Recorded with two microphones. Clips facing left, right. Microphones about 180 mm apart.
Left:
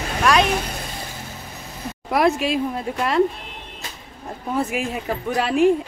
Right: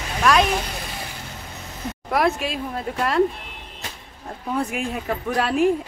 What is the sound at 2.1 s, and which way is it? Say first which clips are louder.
Speech: left 3 dB; centre (ahead or behind).